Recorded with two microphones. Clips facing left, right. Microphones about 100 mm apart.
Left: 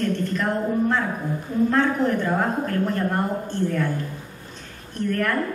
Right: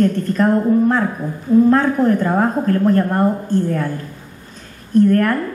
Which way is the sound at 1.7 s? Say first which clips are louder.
Right 6 dB; 45° right (ahead or behind).